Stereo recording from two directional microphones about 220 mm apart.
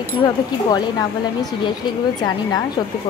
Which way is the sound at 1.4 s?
20° left (ahead or behind).